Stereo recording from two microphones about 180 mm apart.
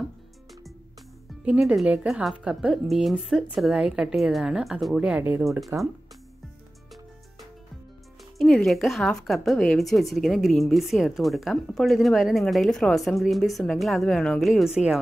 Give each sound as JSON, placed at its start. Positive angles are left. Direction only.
{"t": 1.4, "sound": "a woman's voice", "side_deg": -5}
{"t": 8.4, "sound": "a woman's voice", "side_deg": 0}